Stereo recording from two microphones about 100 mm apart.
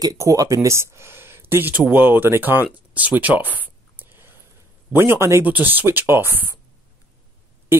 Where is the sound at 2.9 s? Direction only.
15° right (ahead or behind).